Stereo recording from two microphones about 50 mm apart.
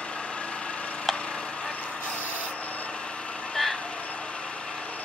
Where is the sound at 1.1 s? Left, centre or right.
Left.